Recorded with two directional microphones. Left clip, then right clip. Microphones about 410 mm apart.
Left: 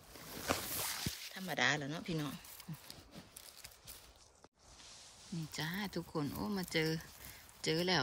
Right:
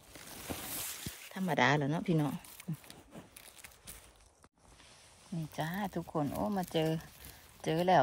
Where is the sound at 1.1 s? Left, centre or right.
Centre.